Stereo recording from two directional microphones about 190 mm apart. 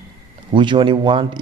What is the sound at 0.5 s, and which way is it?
Speech, 25° right (ahead or behind).